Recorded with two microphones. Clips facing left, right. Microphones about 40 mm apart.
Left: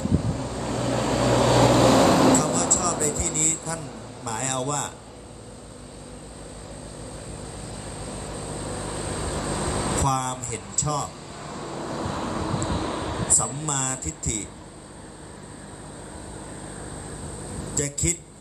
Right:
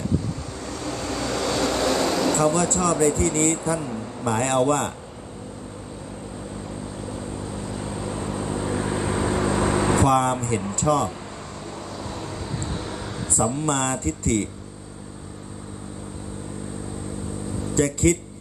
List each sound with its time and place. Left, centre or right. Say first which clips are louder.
0.7 s vehicle: left 5 dB; left
2.3 s speech: right 2 dB; right
7.9 s vehicle: right 6 dB; right
12.0 s vehicle: left 6 dB; left
13.4 s speech: right 7 dB; right
17.7 s speech: right 10 dB; right